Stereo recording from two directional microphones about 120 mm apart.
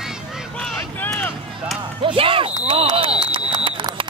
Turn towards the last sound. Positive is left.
turn(degrees=-45)  # may be behind; listen again after turning